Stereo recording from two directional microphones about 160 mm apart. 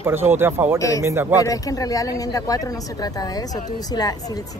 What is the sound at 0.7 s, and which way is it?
Speech, 20° left (ahead or behind).